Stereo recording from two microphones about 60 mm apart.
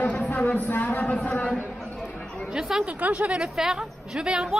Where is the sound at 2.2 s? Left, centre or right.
Centre.